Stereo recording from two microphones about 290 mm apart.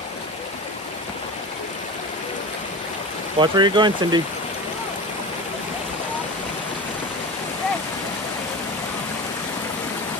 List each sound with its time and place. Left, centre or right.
3.3 s speech: centre